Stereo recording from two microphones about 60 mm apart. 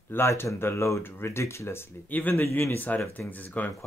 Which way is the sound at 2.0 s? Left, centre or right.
Left.